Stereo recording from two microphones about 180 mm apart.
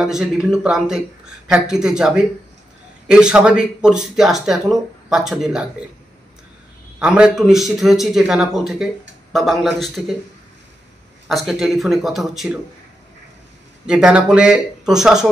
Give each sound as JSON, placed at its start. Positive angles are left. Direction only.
{"t": 0.0, "sound": "speech", "side_deg": -5}
{"t": 7.0, "sound": "speech", "side_deg": -5}
{"t": 11.2, "sound": "speech", "side_deg": 0}
{"t": 13.8, "sound": "speech", "side_deg": -5}